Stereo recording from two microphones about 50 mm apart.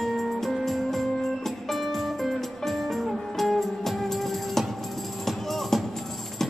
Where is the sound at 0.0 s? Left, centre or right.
Centre.